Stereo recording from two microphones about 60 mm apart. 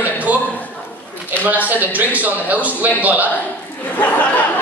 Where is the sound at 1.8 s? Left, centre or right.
Right.